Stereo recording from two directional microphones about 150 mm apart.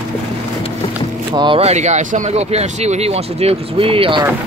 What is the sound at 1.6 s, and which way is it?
Speech, 50° right (ahead or behind).